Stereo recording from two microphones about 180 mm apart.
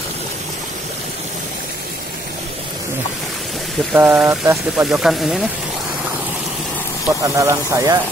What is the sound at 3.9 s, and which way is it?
Speech, 10° right (ahead or behind).